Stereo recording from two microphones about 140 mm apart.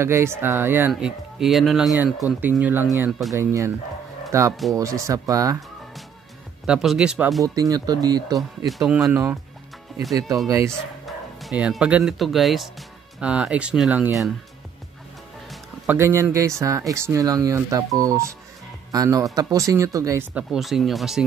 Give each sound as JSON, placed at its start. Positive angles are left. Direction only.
{"t": 0.0, "sound": "speech", "side_deg": -20}
{"t": 0.9, "sound": "speech", "side_deg": -5}
{"t": 2.2, "sound": "speech", "side_deg": 25}
{"t": 2.6, "sound": "speech", "side_deg": -15}
{"t": 3.1, "sound": "speech", "side_deg": 0}
{"t": 3.3, "sound": "speech", "side_deg": -20}
{"t": 6.6, "sound": "speech", "side_deg": -5}
{"t": 7.4, "sound": "speech", "side_deg": -25}
{"t": 8.4, "sound": "speech", "side_deg": 0}
{"t": 9.9, "sound": "music", "side_deg": 0}
{"t": 11.1, "sound": "speech", "side_deg": -5}
{"t": 15.9, "sound": "speech", "side_deg": -20}
{"t": 20.3, "sound": "speech", "side_deg": 0}